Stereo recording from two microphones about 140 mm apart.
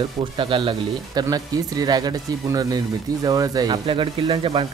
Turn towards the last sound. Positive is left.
turn(degrees=-35)  # may be behind; listen again after turning